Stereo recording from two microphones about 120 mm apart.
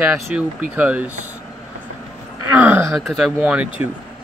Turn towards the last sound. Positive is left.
turn(degrees=-10)  # may be behind; listen again after turning